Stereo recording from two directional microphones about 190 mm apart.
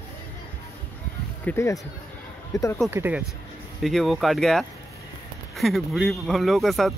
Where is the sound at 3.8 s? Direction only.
Centre (ahead or behind).